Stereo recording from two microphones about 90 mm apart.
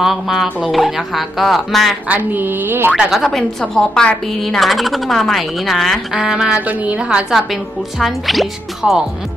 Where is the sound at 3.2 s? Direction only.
5° left (ahead or behind).